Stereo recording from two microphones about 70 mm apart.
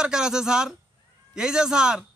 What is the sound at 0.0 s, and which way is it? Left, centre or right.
A man's voice, centre.